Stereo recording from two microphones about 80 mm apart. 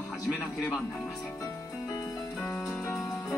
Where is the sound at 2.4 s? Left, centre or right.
Centre.